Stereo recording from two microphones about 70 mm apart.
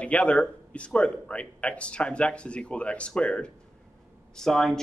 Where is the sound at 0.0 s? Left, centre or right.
Centre.